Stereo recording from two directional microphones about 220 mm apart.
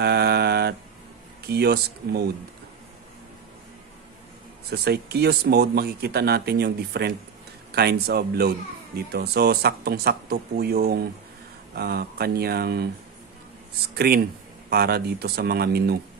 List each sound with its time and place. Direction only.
0.0 s mantra: 45° right (ahead or behind)
1.5 s speech: 45° right (ahead or behind)
4.6 s speech: 45° right (ahead or behind)
13.9 s speech: 45° right (ahead or behind)